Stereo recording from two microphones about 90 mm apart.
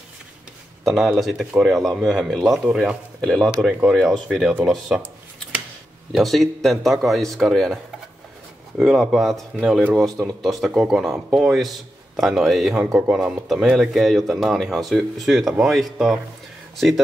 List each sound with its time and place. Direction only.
0.8 s speech: 5° right (ahead or behind)
6.1 s speech: centre (ahead or behind)
10.0 s a man's voice: 35° right (ahead or behind)
10.4 s speech: centre (ahead or behind)